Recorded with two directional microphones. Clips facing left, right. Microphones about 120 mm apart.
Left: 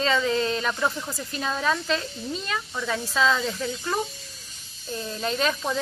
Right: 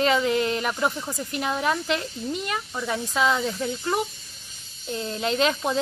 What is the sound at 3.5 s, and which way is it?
Speech, 20° right (ahead or behind).